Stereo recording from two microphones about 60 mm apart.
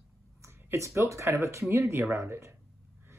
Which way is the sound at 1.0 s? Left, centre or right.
Right.